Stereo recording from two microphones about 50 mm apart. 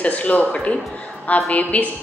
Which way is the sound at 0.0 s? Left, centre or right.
Left.